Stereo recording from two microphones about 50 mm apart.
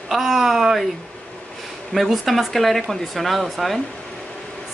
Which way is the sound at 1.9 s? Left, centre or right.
Centre.